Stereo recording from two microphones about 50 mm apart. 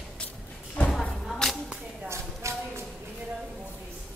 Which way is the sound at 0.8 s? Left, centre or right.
Left.